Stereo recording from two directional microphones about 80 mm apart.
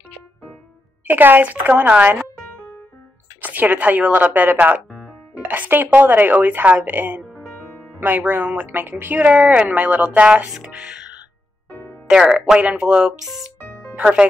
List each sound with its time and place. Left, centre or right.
1.0 s speech: right
3.3 s speech: right; by 13.5 s centre